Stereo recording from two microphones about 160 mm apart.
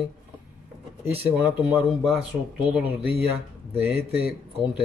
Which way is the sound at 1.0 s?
10° right (ahead or behind).